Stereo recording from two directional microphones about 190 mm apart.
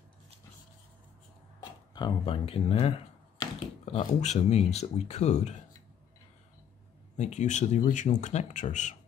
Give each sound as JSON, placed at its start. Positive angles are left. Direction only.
{"t": 1.6, "sound": "speech", "side_deg": 25}
{"t": 7.2, "sound": "speech", "side_deg": 35}